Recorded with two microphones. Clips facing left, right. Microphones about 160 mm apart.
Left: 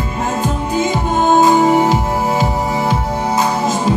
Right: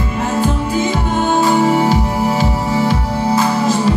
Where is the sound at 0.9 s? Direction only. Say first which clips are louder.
Left 2 dB; 20° left (ahead or behind).